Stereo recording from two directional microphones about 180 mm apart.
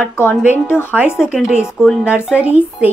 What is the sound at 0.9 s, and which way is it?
Speech, 5° right (ahead or behind).